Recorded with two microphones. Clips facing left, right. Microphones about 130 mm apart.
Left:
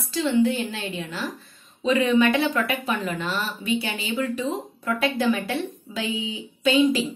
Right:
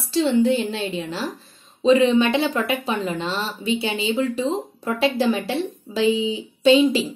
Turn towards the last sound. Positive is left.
turn(degrees=-25)  # may be behind; listen again after turning